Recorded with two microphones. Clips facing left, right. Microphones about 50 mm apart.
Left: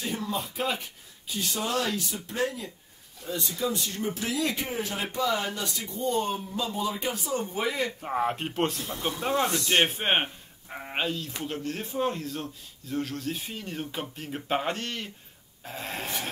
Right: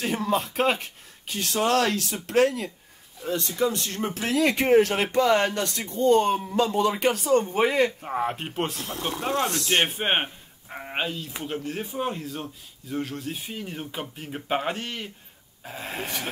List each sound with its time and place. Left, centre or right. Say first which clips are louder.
0.0 s speech: right 6 dB; right
1.3 s speech: right 6 dB; right
3.3 s speech: right 5 dB; right
7.4 s speech: right 7 dB; right
8.0 s speech: even; centre